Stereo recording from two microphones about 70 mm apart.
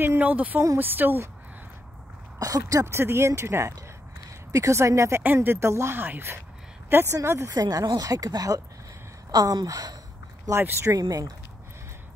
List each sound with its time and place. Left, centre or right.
0.2 s speech: right
2.3 s speech: right
2.9 s speech: right
5.2 s speech: right
7.2 s speech: right
7.5 s speech: right
9.3 s speech: right
10.6 s speech: right
10.9 s speech: right